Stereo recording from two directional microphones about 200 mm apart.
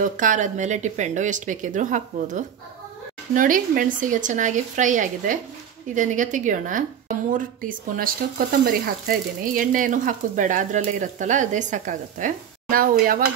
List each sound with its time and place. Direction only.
0.0 s speech: 40° right (ahead or behind)